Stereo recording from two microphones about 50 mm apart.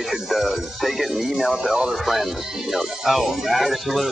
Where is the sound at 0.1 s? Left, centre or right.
Centre.